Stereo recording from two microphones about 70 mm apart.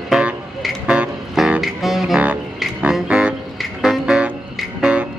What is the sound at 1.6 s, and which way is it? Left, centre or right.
Music, centre.